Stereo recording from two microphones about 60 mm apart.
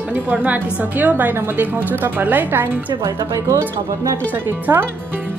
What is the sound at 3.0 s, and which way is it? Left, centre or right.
Speech, right.